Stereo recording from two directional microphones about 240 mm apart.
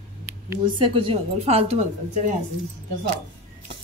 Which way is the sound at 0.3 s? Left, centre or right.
Centre.